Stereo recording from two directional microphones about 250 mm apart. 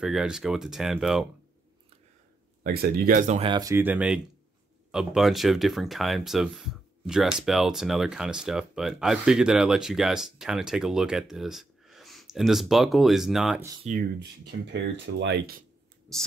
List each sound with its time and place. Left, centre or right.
0.0 s speech: centre
2.6 s speech: right; by 13.7 s centre
14.7 s speech: right
16.1 s speech: centre